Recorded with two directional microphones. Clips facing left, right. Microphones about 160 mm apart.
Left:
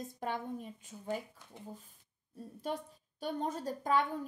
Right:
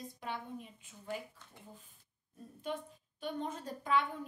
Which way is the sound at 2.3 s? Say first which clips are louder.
Left 2 dB; 40° left (ahead or behind).